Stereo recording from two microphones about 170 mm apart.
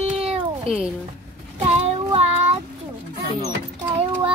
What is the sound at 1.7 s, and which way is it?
Child singing, 40° right (ahead or behind).